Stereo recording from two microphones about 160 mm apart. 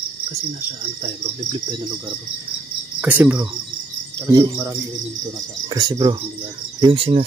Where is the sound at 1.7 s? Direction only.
30° right (ahead or behind).